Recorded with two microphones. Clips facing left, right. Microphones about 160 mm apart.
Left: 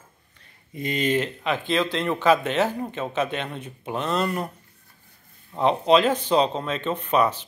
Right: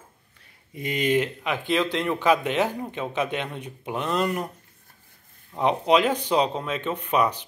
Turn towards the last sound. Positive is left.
turn(degrees=-15)  # may be behind; listen again after turning